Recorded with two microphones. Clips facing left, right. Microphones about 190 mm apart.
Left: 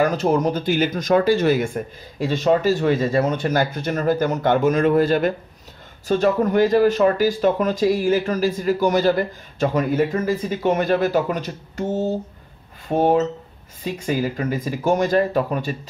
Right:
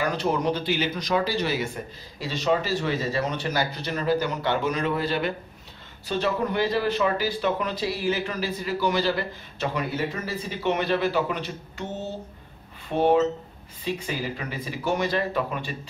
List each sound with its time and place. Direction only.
0.0 s speech: 45° left (ahead or behind)